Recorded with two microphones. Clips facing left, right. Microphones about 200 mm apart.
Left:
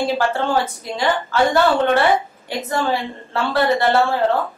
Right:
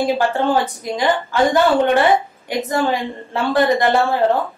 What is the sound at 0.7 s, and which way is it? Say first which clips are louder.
Speech: right 2 dB; 15° right (ahead or behind).